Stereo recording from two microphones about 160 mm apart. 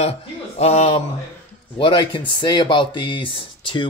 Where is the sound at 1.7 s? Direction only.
30° left (ahead or behind).